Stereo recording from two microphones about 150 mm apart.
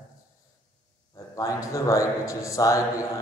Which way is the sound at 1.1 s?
20° left (ahead or behind).